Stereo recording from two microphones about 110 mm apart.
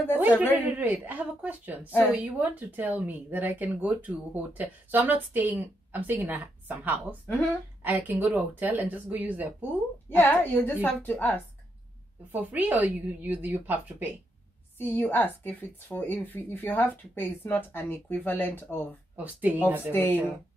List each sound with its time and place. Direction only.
0.2 s speech: 15° right (ahead or behind)
1.9 s speech: 15° left (ahead or behind)
2.1 s speech: 15° right (ahead or behind)
10.0 s speech: 20° left (ahead or behind)
12.3 s speech: 15° right (ahead or behind)
14.8 s speech: 15° left (ahead or behind)
19.1 s speech: 15° right (ahead or behind)
19.9 s speech: 20° left (ahead or behind)